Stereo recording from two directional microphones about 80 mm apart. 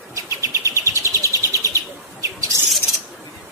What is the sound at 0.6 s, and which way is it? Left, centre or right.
Bird, right.